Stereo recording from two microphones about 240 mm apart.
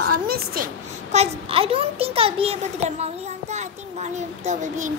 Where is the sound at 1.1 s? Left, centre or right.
Right.